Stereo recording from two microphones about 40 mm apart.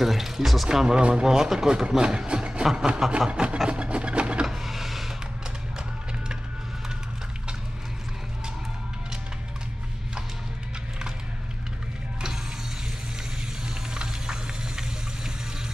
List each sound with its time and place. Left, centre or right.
0.0 s speech: centre
0.7 s speech: centre
2.0 s speech: right
2.6 s speech: centre
3.1 s a sound: right
4.5 s vehicle: centre
13.9 s a sound: centre